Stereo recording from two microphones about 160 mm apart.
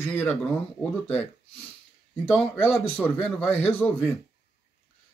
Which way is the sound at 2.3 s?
15° left (ahead or behind).